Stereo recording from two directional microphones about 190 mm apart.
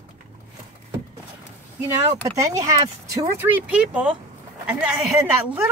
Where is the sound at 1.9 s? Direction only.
15° right (ahead or behind).